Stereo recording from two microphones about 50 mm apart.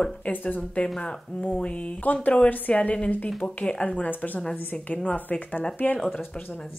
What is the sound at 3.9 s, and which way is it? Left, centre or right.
A woman's voice, left.